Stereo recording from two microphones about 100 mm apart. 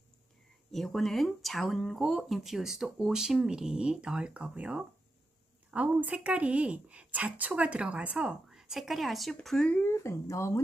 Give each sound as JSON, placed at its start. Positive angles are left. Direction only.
{"t": 0.7, "sound": "a woman's voice", "side_deg": 0}
{"t": 9.8, "sound": "speech", "side_deg": 30}